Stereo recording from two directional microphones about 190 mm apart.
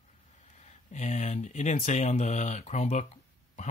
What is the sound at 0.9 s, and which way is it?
Speech, 40° left (ahead or behind).